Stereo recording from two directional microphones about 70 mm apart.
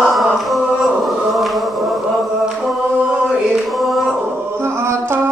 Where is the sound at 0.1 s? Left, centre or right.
Centre.